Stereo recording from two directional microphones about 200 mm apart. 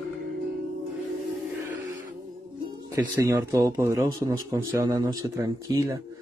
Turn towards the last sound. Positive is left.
turn(degrees=-15)  # may be behind; listen again after turning